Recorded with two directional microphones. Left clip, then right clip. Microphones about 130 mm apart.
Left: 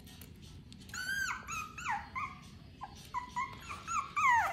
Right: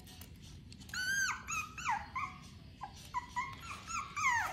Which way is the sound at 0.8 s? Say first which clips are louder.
Right 2 dB; 35° right (ahead or behind).